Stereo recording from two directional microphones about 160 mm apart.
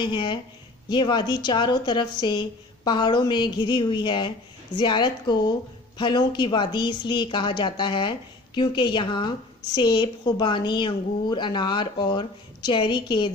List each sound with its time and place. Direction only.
0.0 s a woman's voice: 30° left (ahead or behind)